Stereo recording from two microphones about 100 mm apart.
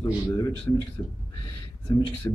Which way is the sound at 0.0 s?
25° left (ahead or behind).